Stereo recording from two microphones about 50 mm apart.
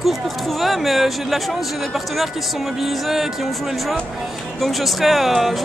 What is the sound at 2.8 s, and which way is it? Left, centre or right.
Speech, centre.